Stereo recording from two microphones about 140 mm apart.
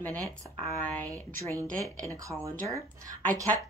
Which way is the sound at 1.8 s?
20° right (ahead or behind).